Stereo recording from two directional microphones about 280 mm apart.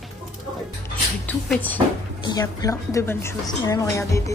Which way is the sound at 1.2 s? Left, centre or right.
Centre.